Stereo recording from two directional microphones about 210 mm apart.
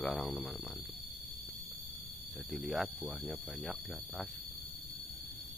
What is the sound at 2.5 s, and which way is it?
Speech, centre (ahead or behind).